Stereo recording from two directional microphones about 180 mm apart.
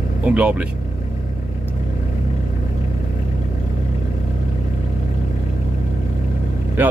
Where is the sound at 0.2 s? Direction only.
10° right (ahead or behind).